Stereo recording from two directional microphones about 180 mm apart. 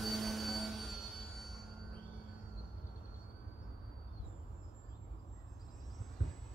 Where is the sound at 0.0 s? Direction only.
Centre (ahead or behind).